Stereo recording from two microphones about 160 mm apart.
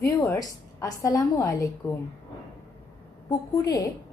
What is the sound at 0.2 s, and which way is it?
A woman's voice, 20° left (ahead or behind).